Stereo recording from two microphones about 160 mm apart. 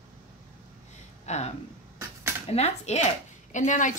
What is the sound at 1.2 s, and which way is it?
A woman's voice, 45° left (ahead or behind).